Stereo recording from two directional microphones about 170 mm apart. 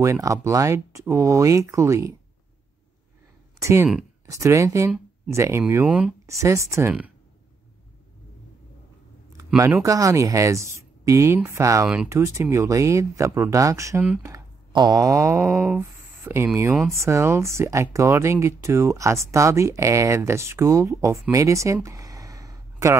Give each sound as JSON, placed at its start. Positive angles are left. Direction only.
{"t": 0.0, "sound": "speech", "side_deg": -15}
{"t": 3.5, "sound": "speech", "side_deg": -15}
{"t": 6.3, "sound": "speech", "side_deg": -15}
{"t": 9.8, "sound": "speech", "side_deg": -20}
{"t": 14.2, "sound": "a sound", "side_deg": -20}
{"t": 16.9, "sound": "speech", "side_deg": -15}